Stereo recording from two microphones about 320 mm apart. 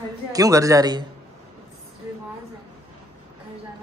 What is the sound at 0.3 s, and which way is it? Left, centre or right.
Speech, centre.